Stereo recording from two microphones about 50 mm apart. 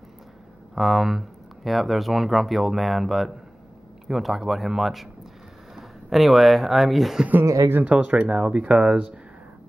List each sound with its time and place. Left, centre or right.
0.7 s speech: centre
7.4 s speech: right
7.9 s speech: right